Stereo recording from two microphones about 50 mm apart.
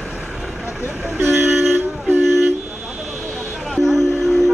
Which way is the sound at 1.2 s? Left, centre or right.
Right.